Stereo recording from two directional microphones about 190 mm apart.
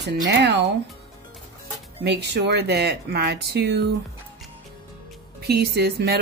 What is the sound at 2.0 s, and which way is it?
Speech, 60° right (ahead or behind).